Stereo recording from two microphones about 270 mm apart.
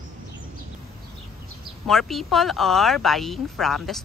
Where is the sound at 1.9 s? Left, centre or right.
Centre.